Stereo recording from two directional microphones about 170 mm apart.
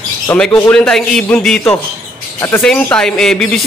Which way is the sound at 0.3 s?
10° left (ahead or behind).